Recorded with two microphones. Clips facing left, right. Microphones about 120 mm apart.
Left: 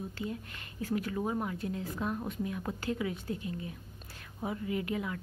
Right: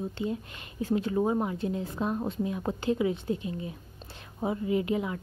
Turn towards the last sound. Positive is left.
turn(degrees=-20)  # may be behind; listen again after turning